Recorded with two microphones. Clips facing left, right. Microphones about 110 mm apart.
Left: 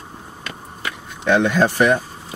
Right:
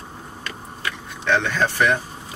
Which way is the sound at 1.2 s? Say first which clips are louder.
Left 5 dB; 15° left (ahead or behind).